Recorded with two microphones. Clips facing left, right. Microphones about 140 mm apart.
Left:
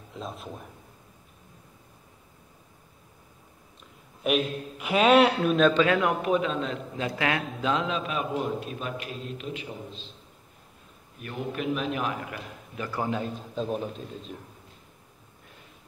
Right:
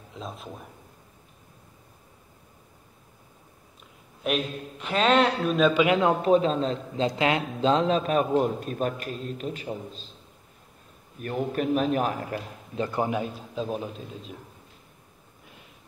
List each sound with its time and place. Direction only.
0.1 s a man's voice: centre (ahead or behind)
4.2 s a man's voice: centre (ahead or behind)
5.8 s a man's voice: 20° right (ahead or behind)
7.1 s a man's voice: 25° right (ahead or behind); by 10.0 s 40° right (ahead or behind)
11.1 s a man's voice: 45° right (ahead or behind)
12.7 s a man's voice: 25° right (ahead or behind)
13.6 s a man's voice: centre (ahead or behind)